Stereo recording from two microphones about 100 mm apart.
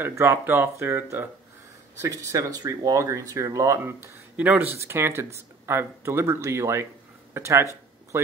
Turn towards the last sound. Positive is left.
turn(degrees=-30)  # may be behind; listen again after turning